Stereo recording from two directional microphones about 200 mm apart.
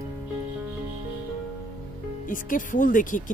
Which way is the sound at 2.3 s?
40° left (ahead or behind).